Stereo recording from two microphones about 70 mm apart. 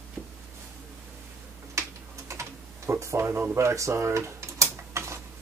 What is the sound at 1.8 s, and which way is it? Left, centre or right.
Typing, right.